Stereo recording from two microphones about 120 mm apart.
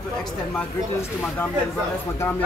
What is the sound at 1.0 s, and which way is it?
Speech, 20° left (ahead or behind).